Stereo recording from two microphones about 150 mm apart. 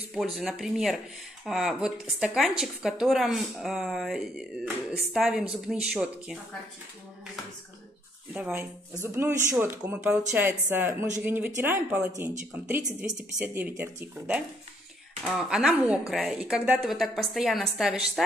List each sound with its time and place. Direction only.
0.1 s speech: 5° right (ahead or behind)
8.3 s speech: 10° right (ahead or behind)